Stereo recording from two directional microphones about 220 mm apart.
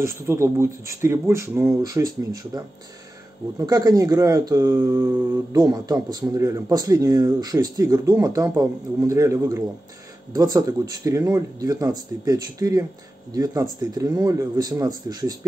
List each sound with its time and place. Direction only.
0.0 s speech: 10° right (ahead or behind)
3.5 s speech: 15° right (ahead or behind)